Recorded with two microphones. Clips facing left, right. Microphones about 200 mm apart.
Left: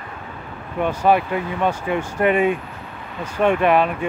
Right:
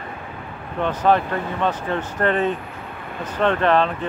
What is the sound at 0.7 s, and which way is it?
Speech, 10° left (ahead or behind).